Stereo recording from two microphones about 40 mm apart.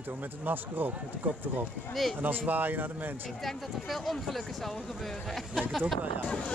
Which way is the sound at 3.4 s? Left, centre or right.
Centre.